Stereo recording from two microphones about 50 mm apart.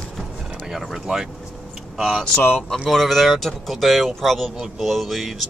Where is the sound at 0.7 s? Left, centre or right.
Centre.